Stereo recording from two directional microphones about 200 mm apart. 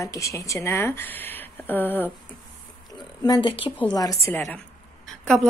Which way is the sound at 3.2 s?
25° left (ahead or behind).